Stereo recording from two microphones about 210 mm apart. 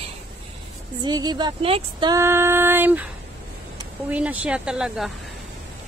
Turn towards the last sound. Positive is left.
turn(degrees=-5)  # may be behind; listen again after turning